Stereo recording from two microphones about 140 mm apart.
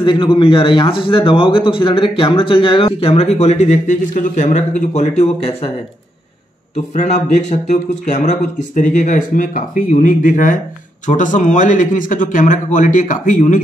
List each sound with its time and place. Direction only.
0.0 s a man's voice: 35° left (ahead or behind)
6.9 s speech: 60° left (ahead or behind)